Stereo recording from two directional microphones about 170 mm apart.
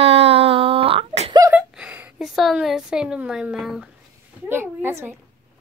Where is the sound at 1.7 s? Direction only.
5° right (ahead or behind).